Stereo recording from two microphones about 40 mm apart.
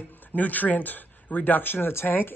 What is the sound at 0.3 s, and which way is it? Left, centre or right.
Speech, left.